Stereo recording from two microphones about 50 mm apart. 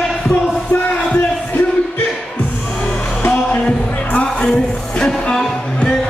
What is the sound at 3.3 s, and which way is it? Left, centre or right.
Music, left.